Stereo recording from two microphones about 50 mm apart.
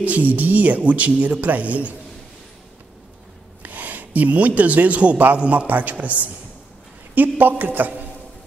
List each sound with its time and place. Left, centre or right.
0.0 s speech: right
3.6 s a man's voice: right
7.2 s speech: right